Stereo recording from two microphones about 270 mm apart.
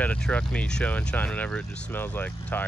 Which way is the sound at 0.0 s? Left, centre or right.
Centre.